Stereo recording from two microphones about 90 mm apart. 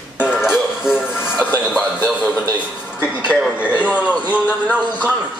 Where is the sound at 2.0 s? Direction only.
15° right (ahead or behind).